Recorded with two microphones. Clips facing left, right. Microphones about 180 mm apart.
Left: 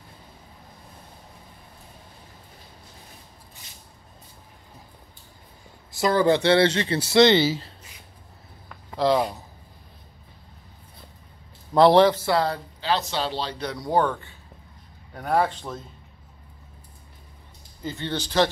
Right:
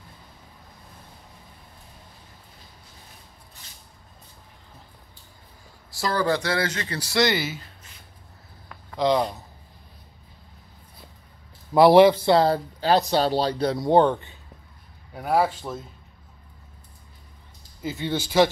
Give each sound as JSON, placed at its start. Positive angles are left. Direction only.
{"t": 5.9, "sound": "speech", "side_deg": 20}
{"t": 8.6, "sound": "a sound", "side_deg": 5}
{"t": 11.7, "sound": "speech", "side_deg": -10}
{"t": 12.3, "sound": "speech", "side_deg": -30}
{"t": 15.1, "sound": "speech", "side_deg": -5}
{"t": 17.8, "sound": "speech", "side_deg": -5}